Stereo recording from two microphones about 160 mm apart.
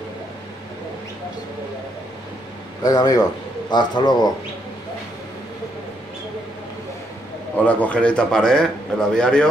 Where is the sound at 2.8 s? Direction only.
25° left (ahead or behind).